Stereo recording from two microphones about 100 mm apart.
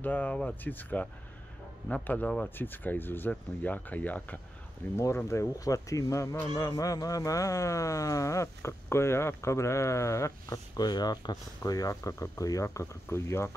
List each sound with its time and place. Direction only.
0.0 s speech: 15° left (ahead or behind)
4.9 s speech: 25° left (ahead or behind)
10.9 s speech: 45° left (ahead or behind); by 13.6 s 25° left (ahead or behind)